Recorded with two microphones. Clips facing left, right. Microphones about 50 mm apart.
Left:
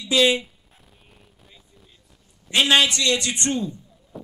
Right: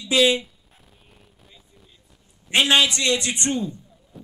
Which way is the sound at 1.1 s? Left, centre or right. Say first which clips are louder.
Even; centre.